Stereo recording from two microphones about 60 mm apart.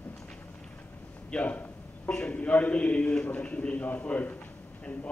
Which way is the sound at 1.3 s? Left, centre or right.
Left.